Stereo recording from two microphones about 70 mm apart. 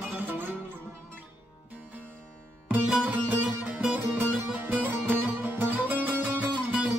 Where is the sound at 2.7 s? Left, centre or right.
Right.